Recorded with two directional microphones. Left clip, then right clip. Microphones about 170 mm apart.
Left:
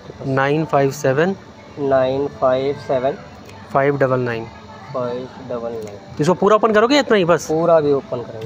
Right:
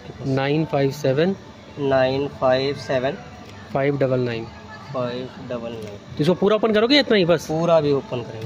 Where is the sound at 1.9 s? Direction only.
60° right (ahead or behind).